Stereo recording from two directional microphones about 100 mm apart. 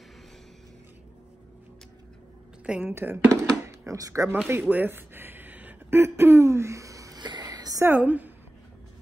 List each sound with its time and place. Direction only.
2.6 s a woman's voice: 10° right (ahead or behind)
2.9 s speech: 25° right (ahead or behind)
4.5 s a sound: 20° right (ahead or behind); by 7.8 s 40° right (ahead or behind)
7.8 s a woman's voice: 15° right (ahead or behind)